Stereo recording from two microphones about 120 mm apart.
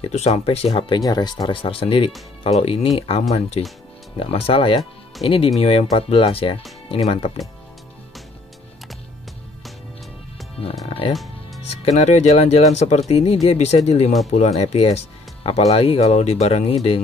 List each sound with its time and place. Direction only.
0.1 s speech: 65° left (ahead or behind); by 1.0 s 45° left (ahead or behind)
1.0 s speech: 35° left (ahead or behind); by 7.3 s 55° left (ahead or behind)
10.9 s speech: 55° left (ahead or behind)